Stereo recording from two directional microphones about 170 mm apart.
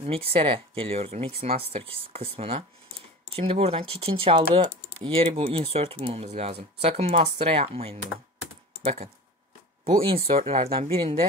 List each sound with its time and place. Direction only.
0.0 s speech: 35° right (ahead or behind)